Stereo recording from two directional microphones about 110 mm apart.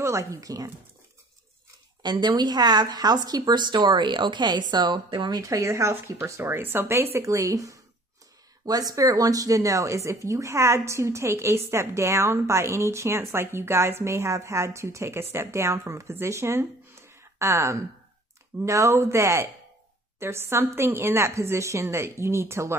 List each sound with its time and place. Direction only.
0.0 s speech: 30° right (ahead or behind)
2.0 s a woman's voice: 40° right (ahead or behind)
5.4 s speech: 30° right (ahead or behind)